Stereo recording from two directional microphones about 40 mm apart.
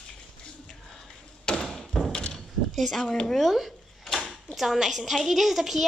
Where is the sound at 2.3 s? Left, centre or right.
Centre.